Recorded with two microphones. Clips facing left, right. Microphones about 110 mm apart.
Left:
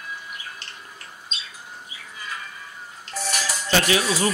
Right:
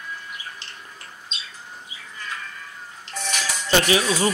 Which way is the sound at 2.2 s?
10° left (ahead or behind).